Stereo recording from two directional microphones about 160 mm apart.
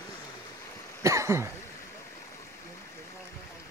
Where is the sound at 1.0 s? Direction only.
20° right (ahead or behind).